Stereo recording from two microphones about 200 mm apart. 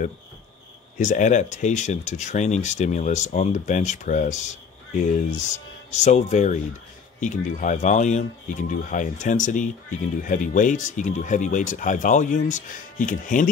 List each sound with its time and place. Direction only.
0.9 s speech: 40° left (ahead or behind)